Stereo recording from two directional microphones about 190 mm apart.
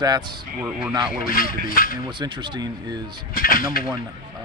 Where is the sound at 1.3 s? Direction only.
50° left (ahead or behind).